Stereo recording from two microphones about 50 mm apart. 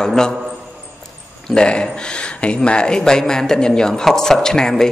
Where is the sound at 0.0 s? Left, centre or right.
Centre.